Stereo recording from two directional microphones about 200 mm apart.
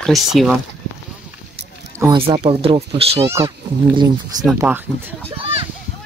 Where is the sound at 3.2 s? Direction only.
15° right (ahead or behind).